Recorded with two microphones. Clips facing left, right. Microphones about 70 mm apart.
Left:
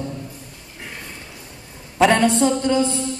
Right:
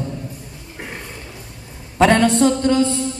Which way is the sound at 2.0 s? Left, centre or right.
Centre.